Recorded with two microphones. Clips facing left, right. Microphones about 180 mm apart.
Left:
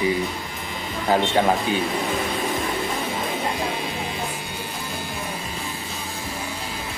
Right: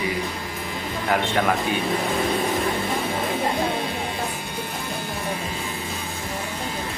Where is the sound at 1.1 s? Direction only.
25° left (ahead or behind).